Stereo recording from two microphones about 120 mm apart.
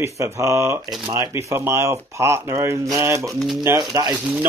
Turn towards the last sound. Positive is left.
turn(degrees=-30)  # may be behind; listen again after turning